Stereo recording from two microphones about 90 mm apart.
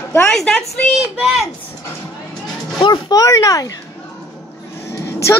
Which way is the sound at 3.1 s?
40° left (ahead or behind).